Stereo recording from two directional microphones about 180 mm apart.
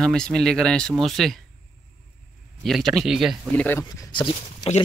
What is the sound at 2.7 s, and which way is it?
Speech, centre (ahead or behind).